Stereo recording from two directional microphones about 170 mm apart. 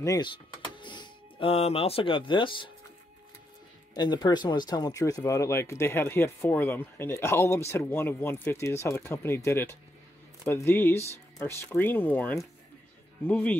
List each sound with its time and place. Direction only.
0.0 s speech: 25° left (ahead or behind)
3.9 s speech: 25° left (ahead or behind); by 13.6 s 10° left (ahead or behind)